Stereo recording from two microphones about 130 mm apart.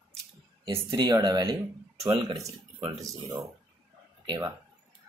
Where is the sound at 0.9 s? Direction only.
35° right (ahead or behind).